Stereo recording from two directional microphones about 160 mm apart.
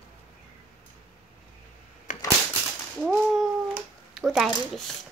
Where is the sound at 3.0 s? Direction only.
Centre (ahead or behind).